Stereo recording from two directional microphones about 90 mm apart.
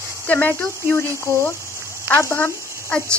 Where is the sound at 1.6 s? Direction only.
30° right (ahead or behind).